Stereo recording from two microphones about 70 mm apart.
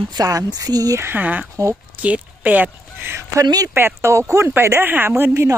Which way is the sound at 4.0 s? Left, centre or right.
Right.